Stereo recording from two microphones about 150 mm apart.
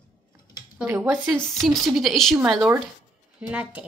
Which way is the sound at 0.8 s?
10° right (ahead or behind).